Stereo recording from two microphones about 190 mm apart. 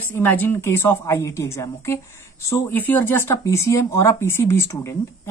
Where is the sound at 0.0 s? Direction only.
10° left (ahead or behind).